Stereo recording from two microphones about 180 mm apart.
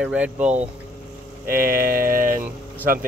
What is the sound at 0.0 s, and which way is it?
Speech, 5° right (ahead or behind).